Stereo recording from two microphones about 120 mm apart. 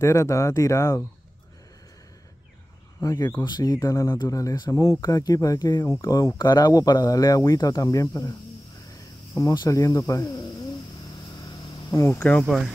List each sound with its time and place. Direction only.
0.0 s speech: 25° left (ahead or behind)
3.0 s speech: 30° left (ahead or behind)
12.1 s speech: 10° left (ahead or behind)
12.4 s speech: 5° right (ahead or behind)